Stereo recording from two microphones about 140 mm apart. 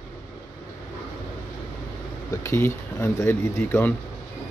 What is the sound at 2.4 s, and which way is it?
Speech, 20° left (ahead or behind).